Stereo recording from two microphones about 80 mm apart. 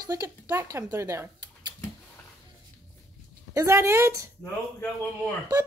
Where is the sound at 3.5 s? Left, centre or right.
Right.